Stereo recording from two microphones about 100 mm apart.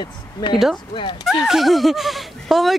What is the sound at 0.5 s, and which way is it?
Speech, 5° right (ahead or behind).